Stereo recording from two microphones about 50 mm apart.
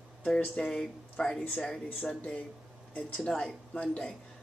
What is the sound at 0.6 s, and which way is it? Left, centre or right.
A man's voice, centre.